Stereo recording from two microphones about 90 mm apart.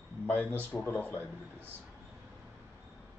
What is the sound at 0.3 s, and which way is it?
Speech, 20° left (ahead or behind).